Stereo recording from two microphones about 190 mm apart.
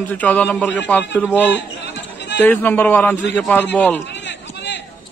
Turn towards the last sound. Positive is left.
turn(degrees=70)  # may be behind; listen again after turning